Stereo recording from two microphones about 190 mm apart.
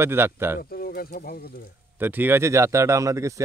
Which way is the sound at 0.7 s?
50° left (ahead or behind).